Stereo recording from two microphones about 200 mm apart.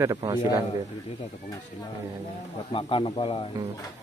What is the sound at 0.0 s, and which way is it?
Speech, 15° right (ahead or behind).